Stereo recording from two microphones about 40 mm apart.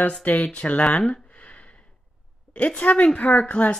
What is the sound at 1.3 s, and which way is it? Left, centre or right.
Sniff, left.